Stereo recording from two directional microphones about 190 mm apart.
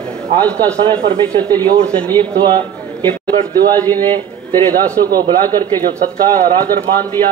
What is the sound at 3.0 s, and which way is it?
Speech, 10° left (ahead or behind).